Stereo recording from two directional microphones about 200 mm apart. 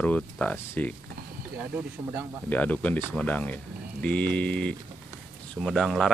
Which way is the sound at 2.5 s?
5° left (ahead or behind).